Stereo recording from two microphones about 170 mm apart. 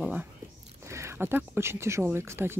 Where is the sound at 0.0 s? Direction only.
10° right (ahead or behind).